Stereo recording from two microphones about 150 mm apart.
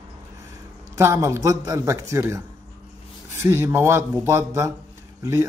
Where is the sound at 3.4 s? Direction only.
15° right (ahead or behind).